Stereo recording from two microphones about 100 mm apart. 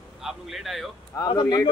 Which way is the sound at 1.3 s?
50° left (ahead or behind).